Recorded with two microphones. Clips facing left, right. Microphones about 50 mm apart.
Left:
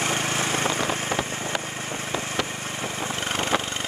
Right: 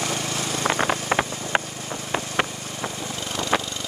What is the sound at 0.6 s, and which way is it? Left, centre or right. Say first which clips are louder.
Vehicle: right 2 dB; right.